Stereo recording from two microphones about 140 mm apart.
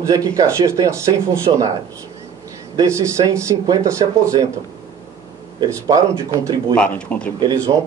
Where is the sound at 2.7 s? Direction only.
20° right (ahead or behind).